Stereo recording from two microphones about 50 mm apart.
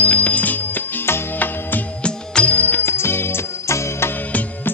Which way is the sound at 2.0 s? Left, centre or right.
Centre.